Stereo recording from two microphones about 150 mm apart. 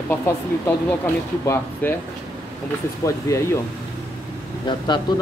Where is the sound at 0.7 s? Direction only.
15° left (ahead or behind).